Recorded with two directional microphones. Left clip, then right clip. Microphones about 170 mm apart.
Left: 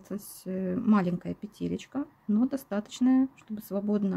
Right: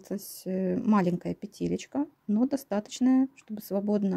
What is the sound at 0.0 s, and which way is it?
Speech, 35° right (ahead or behind).